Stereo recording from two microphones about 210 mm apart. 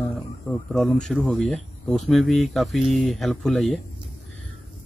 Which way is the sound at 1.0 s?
Centre (ahead or behind).